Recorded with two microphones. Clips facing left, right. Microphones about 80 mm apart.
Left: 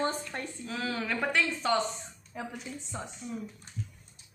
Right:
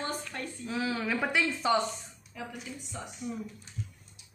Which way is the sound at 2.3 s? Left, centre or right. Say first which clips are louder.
Left 2 dB; left.